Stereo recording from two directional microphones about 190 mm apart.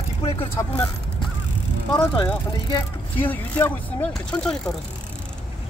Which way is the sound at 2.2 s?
10° left (ahead or behind).